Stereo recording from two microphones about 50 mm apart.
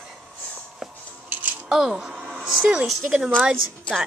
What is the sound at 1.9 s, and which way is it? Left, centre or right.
Music, centre.